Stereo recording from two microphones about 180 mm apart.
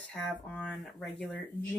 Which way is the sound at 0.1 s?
5° left (ahead or behind).